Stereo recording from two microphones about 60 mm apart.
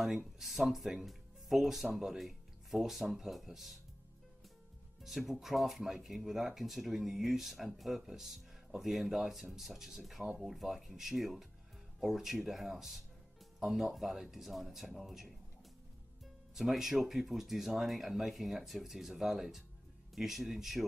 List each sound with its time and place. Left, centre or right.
0.4 s speech: centre
5.0 s speech: centre
16.5 s speech: centre